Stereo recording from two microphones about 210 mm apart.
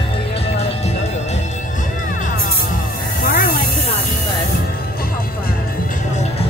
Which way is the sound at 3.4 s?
45° left (ahead or behind).